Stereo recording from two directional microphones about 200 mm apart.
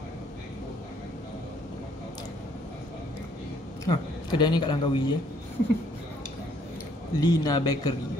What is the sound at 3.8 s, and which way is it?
Speech, 20° left (ahead or behind).